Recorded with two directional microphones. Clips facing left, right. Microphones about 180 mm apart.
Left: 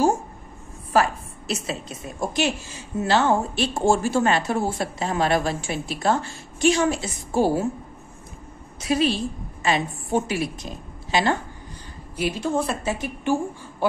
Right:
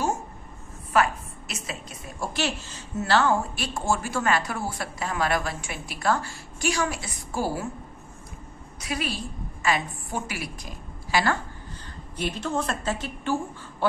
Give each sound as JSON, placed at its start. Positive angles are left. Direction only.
{"t": 1.5, "sound": "a woman's voice", "side_deg": 25}
{"t": 8.8, "sound": "a woman's voice", "side_deg": 25}
{"t": 12.2, "sound": "a woman's voice", "side_deg": 5}